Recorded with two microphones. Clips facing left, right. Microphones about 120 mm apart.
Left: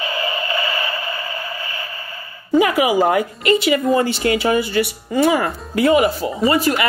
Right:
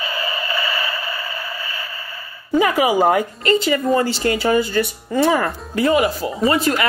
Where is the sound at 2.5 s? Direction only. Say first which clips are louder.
Left 1 dB; 5° left (ahead or behind).